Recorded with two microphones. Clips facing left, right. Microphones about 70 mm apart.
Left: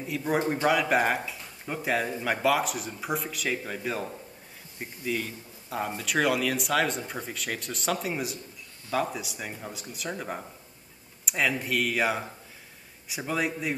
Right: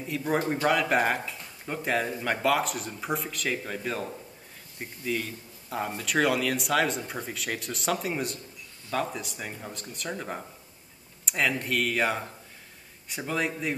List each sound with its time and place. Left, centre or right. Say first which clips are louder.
0.0 s speech: left 1 dB; centre